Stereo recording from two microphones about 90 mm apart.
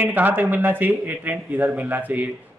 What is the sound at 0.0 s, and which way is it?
Speech, 20° right (ahead or behind).